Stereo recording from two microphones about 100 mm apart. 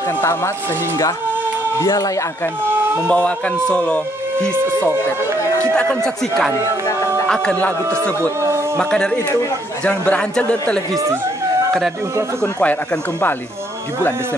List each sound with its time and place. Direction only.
0.2 s speech: 30° left (ahead or behind)
1.8 s speech: 30° left (ahead or behind)
3.1 s a man's voice: 10° left (ahead or behind)
5.8 s a man's voice: 10° left (ahead or behind)
8.4 s a sound: 30° right (ahead or behind)
8.7 s a man's voice: 10° left (ahead or behind)
12.5 s a man's voice: 15° left (ahead or behind)